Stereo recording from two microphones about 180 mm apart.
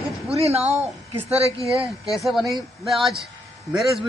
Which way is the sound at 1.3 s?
35° right (ahead or behind).